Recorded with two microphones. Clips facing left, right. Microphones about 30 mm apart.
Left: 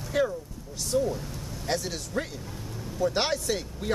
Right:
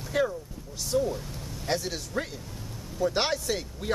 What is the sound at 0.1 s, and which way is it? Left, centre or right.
Vehicle, centre.